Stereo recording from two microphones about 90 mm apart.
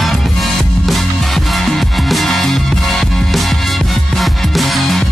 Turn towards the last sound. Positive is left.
turn(degrees=0)  # may be behind; listen again after turning